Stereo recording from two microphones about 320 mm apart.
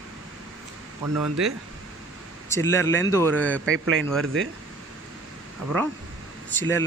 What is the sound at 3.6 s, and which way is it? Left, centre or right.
Speech, right.